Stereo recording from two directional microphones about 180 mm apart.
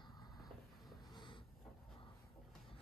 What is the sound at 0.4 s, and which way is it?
Vehicle, centre (ahead or behind).